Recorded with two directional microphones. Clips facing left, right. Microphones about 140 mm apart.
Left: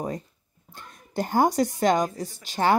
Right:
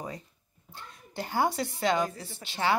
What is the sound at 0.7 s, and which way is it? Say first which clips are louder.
Speech: left 8 dB; 45° left (ahead or behind).